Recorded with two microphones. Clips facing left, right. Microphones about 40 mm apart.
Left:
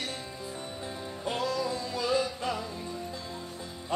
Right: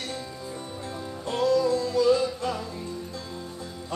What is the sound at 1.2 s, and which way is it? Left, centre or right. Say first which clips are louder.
Music: right 8 dB; centre.